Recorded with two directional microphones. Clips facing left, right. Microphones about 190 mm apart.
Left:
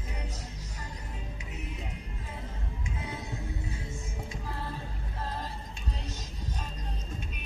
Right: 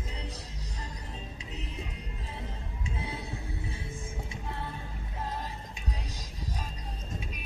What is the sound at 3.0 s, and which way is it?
Music, 30° right (ahead or behind).